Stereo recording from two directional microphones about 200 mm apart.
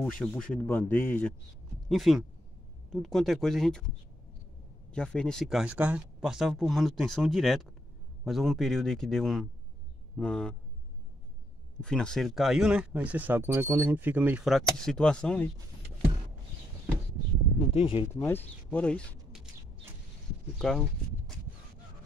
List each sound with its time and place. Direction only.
0.0 s speech: 5° left (ahead or behind)
4.9 s speech: 5° left (ahead or behind)
11.8 s speech: 5° left (ahead or behind)
17.7 s speech: 25° left (ahead or behind)
18.2 s speech: 10° left (ahead or behind)
20.5 s speech: 5° left (ahead or behind)